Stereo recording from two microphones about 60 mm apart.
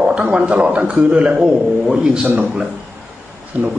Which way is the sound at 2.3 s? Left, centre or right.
Right.